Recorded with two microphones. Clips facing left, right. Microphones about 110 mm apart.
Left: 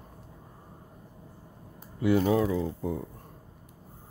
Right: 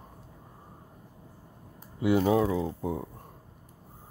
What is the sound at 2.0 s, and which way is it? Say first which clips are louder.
Speech: even; 20° right (ahead or behind).